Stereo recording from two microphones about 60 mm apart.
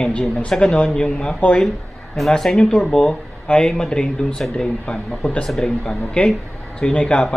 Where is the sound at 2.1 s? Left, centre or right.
Centre.